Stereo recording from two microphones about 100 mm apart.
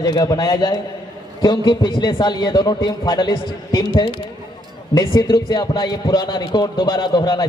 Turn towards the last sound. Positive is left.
turn(degrees=45)  # may be behind; listen again after turning